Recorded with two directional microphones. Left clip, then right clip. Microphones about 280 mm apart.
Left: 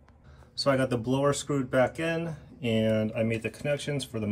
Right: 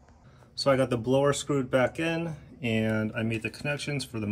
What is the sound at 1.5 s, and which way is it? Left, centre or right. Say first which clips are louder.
Speech: right 3 dB; right.